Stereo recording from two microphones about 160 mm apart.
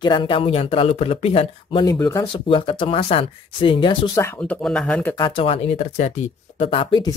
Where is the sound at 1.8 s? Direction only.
20° left (ahead or behind).